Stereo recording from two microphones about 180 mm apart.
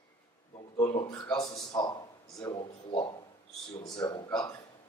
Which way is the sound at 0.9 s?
25° left (ahead or behind).